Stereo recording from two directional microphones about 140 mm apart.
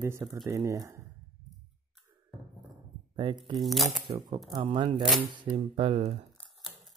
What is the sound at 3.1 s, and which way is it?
Speech, 35° right (ahead or behind).